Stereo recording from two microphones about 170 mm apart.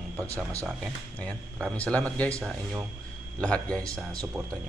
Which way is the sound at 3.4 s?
5° left (ahead or behind).